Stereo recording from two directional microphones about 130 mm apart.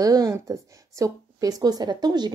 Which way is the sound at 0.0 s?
30° right (ahead or behind).